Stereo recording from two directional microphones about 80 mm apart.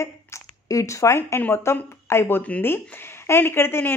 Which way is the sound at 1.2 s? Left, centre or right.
Left.